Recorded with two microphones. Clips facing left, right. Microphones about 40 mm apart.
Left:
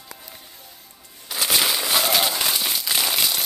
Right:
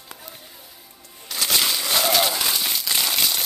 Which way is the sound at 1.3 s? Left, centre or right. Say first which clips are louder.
Left 1 dB; centre.